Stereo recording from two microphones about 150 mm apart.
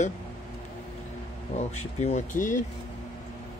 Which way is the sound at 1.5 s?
50° left (ahead or behind).